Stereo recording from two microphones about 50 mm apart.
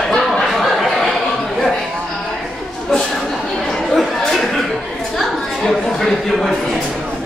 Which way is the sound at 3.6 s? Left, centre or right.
Centre.